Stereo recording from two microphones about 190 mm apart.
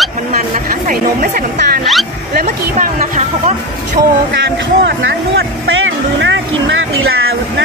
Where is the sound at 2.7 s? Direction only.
45° right (ahead or behind).